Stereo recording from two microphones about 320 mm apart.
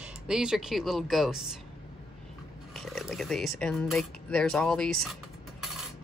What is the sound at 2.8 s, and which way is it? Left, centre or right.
Speech, centre.